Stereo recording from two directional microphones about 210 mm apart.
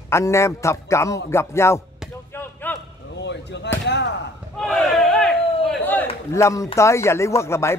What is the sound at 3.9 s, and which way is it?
Slam, 55° left (ahead or behind).